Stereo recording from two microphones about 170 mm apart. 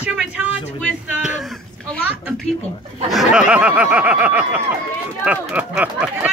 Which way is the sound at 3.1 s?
5° right (ahead or behind).